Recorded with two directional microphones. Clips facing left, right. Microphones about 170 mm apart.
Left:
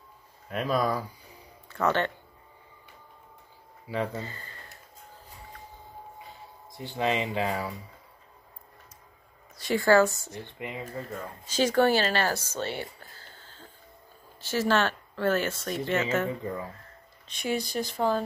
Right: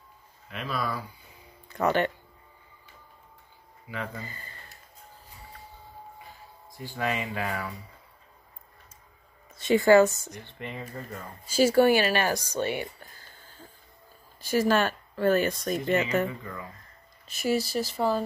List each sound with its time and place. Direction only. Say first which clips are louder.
0.5 s speech: left 5 dB; 45° left (ahead or behind)
1.7 s speech: right 1 dB; 15° right (ahead or behind)
3.9 s speech: left 6 dB; 35° left (ahead or behind)
6.8 s speech: left 3 dB; 20° left (ahead or behind)
9.6 s a woman's voice: right 3 dB; 20° right (ahead or behind)
10.4 s speech: left 1 dB; 10° left (ahead or behind)
11.4 s speech: right 3 dB; 10° right (ahead or behind)
17.3 s speech: right 3 dB; 5° right (ahead or behind)